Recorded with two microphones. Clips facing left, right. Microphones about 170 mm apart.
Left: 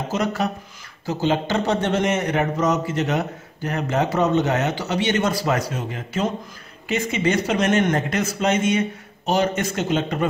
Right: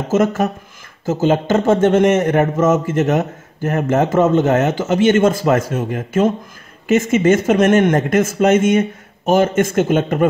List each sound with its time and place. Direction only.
0.1 s a man's voice: 45° right (ahead or behind)